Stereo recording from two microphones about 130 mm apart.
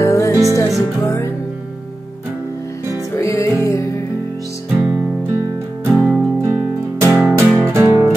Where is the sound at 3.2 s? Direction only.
25° left (ahead or behind).